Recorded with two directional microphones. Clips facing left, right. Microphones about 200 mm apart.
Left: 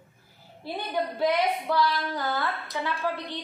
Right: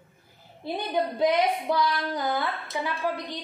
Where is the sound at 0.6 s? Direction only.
15° right (ahead or behind).